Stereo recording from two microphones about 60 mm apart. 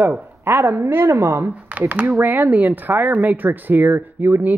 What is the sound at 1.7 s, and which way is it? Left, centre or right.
Speech, right.